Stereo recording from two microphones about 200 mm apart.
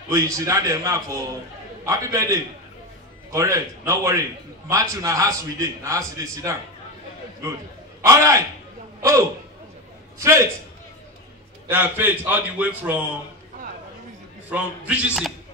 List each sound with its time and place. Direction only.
0.1 s a man's voice: 15° right (ahead or behind)
10.1 s a man's voice: 15° right (ahead or behind)
11.6 s a man's voice: 10° right (ahead or behind)
14.5 s a man's voice: 5° right (ahead or behind)